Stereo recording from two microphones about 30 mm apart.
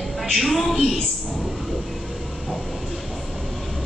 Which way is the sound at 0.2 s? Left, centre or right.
Centre.